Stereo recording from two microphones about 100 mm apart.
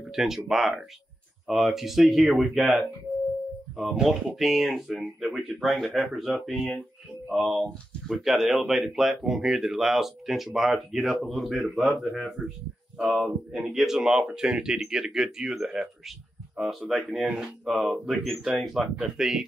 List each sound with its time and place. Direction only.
0.1 s speech: 5° right (ahead or behind)